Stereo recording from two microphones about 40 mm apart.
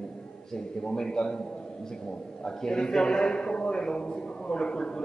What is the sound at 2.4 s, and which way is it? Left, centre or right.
A man's voice, centre.